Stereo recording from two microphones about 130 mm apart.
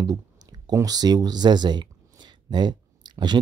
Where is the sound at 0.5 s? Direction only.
30° right (ahead or behind).